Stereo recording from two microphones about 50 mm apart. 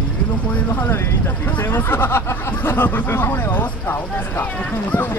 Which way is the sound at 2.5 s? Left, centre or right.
Left.